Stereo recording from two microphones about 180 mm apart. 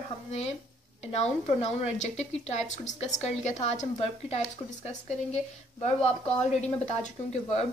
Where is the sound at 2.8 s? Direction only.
40° left (ahead or behind).